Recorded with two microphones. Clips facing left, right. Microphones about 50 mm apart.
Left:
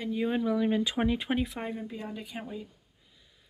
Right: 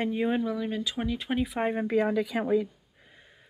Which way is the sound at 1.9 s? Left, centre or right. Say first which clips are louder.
Right 15 dB; right.